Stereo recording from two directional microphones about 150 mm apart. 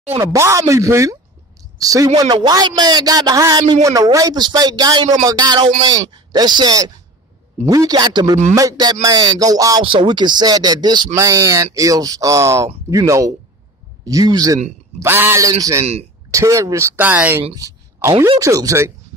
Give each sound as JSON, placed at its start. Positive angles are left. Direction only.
{"t": 0.2, "sound": "a man's voice", "side_deg": -20}
{"t": 15.8, "sound": "speech", "side_deg": -45}
{"t": 16.3, "sound": "speech", "side_deg": -20}
{"t": 17.6, "sound": "a sound", "side_deg": -20}
{"t": 18.4, "sound": "a man's voice", "side_deg": -20}